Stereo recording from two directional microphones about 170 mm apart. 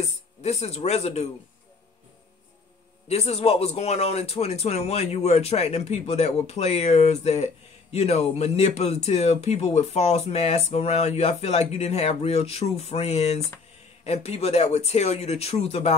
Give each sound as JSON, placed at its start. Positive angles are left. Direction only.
{"t": 0.0, "sound": "speech", "side_deg": 40}
{"t": 3.1, "sound": "speech", "side_deg": 40}